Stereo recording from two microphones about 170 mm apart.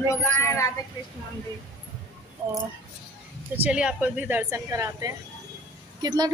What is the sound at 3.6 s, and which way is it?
A woman's voice, 5° right (ahead or behind).